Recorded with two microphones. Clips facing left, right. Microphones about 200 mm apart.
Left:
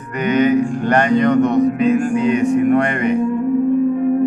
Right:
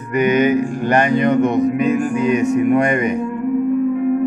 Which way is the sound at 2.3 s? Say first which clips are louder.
Right 1 dB; 35° left (ahead or behind).